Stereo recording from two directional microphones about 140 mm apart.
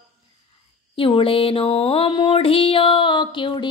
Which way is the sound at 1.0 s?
40° left (ahead or behind).